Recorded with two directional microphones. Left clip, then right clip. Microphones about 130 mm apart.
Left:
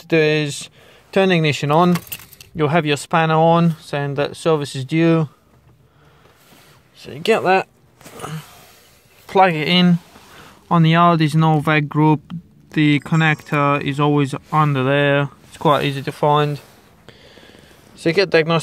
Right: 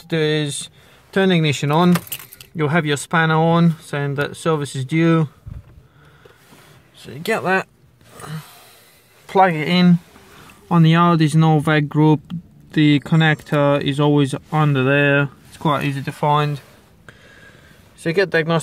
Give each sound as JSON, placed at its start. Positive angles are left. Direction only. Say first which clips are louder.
{"t": 0.0, "sound": "speech", "louder": "left 4 dB", "side_deg": 25}
{"t": 7.1, "sound": "speech", "louder": "left 4 dB", "side_deg": 20}
{"t": 8.2, "sound": "a sound", "louder": "left 3 dB", "side_deg": 25}
{"t": 9.2, "sound": "speech", "louder": "left 1 dB", "side_deg": 30}
{"t": 18.0, "sound": "speech", "louder": "left 2 dB", "side_deg": 25}